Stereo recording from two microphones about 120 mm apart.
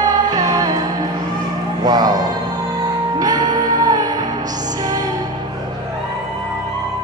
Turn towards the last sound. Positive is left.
turn(degrees=-30)  # may be behind; listen again after turning